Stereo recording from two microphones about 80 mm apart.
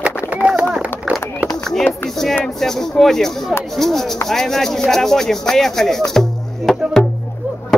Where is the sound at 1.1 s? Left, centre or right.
Centre.